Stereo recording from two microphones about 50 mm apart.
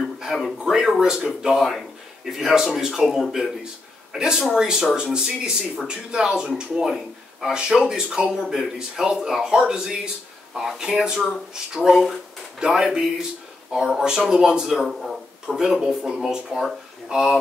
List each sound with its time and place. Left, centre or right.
0.2 s speech: centre
1.5 s speech: centre